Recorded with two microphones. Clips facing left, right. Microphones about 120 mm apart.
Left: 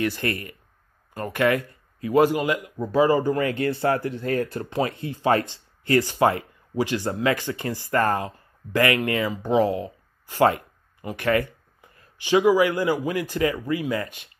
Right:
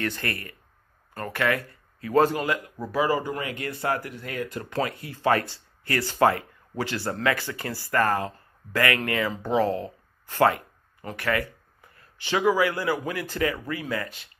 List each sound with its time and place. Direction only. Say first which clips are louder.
0.0 s speech: left 5 dB; 15° left (ahead or behind); by 4.6 s 35° left (ahead or behind)
4.6 s speech: left 3 dB; 25° left (ahead or behind)